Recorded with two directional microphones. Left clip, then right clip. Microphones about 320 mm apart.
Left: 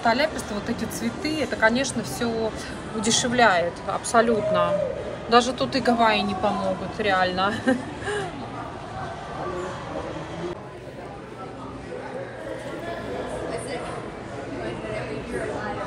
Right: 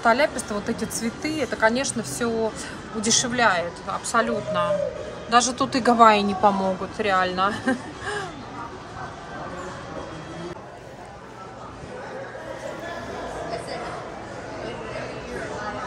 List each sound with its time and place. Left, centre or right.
0.0 s a woman's voice: right